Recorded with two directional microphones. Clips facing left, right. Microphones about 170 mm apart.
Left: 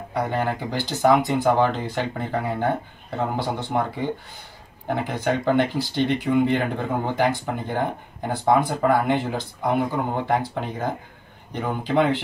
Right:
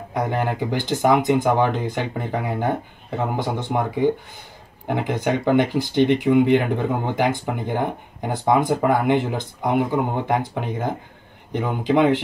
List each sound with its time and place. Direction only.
0.1 s speech: 15° right (ahead or behind)